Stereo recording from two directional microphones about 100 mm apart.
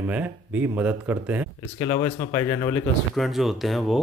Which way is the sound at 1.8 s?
35° left (ahead or behind).